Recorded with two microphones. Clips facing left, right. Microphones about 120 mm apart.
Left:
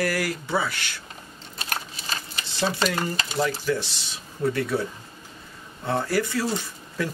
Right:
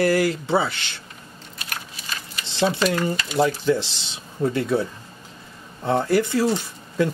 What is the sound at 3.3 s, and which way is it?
Speech, 25° right (ahead or behind).